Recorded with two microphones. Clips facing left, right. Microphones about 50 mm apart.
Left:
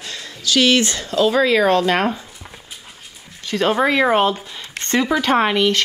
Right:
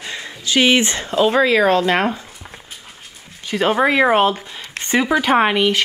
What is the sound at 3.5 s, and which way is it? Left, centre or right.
Speech, centre.